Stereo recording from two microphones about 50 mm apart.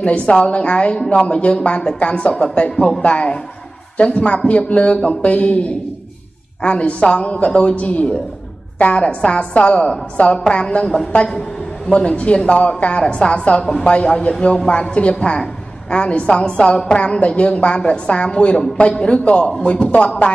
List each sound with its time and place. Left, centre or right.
0.0 s a woman's voice: left